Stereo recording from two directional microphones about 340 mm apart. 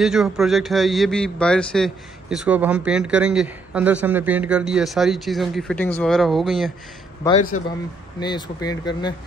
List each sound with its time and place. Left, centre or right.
0.0 s a man's voice: centre
7.2 s speech: centre